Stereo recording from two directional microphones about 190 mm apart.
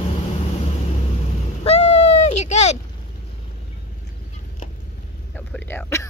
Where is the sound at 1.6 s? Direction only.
35° left (ahead or behind).